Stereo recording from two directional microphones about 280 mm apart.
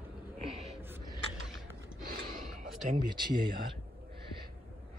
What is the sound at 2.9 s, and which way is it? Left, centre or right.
Speech, centre.